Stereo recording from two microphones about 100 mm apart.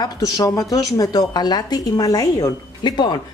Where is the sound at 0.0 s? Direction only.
35° left (ahead or behind).